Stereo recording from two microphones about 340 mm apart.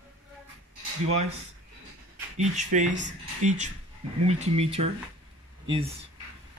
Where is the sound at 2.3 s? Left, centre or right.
Right.